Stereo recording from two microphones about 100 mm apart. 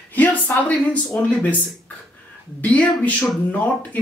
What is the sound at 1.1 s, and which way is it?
Speech, 15° left (ahead or behind).